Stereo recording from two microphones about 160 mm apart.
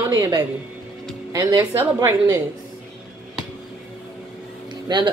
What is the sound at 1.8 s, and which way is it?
Speech, 15° right (ahead or behind).